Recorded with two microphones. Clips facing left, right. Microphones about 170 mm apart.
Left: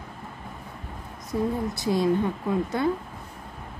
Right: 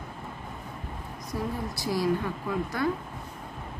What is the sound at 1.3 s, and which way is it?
Speech, 20° left (ahead or behind).